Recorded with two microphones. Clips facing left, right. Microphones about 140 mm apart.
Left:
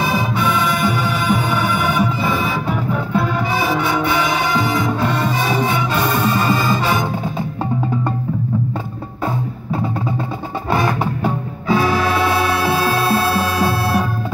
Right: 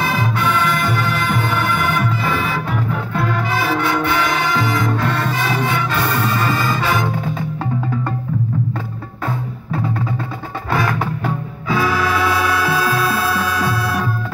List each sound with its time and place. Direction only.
0.0 s music: 15° left (ahead or behind)
10.7 s music: 20° left (ahead or behind)